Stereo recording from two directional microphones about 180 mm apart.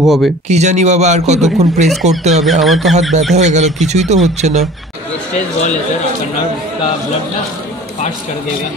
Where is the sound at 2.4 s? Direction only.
Centre (ahead or behind).